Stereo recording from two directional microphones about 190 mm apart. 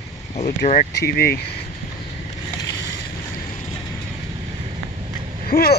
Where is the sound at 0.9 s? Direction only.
55° left (ahead or behind).